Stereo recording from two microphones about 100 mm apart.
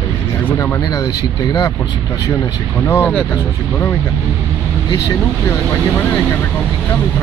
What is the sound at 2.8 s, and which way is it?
Speech, 20° left (ahead or behind).